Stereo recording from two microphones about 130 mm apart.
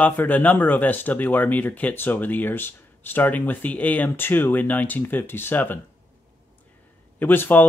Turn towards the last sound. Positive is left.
turn(degrees=15)  # may be behind; listen again after turning